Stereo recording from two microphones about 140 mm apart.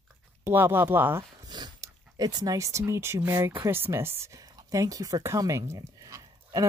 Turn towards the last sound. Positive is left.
turn(degrees=-25)  # may be behind; listen again after turning